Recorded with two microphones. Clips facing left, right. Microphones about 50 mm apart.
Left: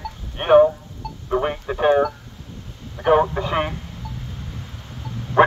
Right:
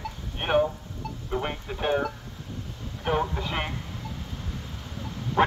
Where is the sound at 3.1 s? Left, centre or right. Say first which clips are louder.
Left 10 dB; left.